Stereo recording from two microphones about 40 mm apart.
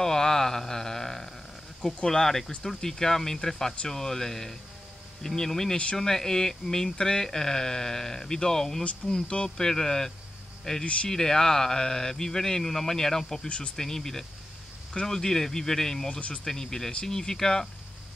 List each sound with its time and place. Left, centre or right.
0.0 s a sound: centre
2.0 s speech: centre
8.8 s speech: left
9.6 s speech: centre